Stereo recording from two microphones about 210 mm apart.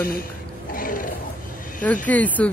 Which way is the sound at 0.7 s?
40° left (ahead or behind).